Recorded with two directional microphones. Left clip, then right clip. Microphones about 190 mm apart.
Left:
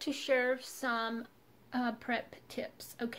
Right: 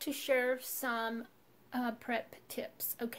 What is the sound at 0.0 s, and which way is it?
A woman's voice, 5° right (ahead or behind).